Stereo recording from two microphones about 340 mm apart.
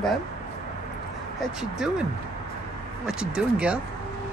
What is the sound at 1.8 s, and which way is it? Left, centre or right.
Speech, centre.